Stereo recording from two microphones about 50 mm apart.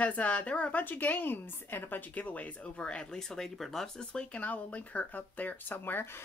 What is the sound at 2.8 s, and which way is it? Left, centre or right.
Speech, centre.